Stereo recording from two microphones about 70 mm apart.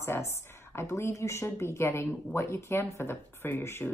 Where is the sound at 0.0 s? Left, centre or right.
Left.